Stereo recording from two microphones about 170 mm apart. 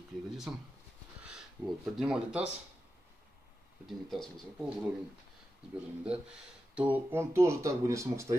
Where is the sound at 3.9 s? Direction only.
Centre (ahead or behind).